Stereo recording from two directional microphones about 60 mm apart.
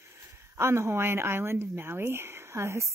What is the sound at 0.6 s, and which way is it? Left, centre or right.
Speech, right.